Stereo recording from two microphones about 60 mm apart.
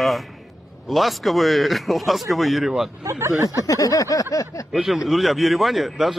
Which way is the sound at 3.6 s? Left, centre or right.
Left.